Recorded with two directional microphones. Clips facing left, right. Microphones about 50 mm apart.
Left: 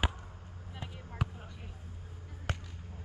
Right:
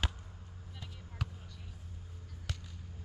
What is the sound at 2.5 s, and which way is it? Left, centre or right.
Basketball bounce, left.